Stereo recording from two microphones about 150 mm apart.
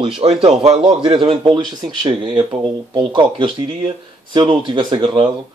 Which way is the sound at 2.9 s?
30° right (ahead or behind).